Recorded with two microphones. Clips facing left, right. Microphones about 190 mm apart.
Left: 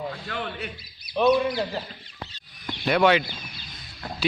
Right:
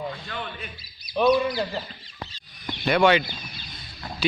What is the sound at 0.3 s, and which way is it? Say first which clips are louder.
Speech: left 3 dB; 65° left (ahead or behind).